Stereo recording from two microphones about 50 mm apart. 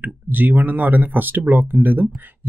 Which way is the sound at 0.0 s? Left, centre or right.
Right.